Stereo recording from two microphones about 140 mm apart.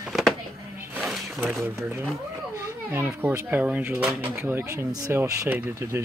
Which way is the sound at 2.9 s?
15° right (ahead or behind).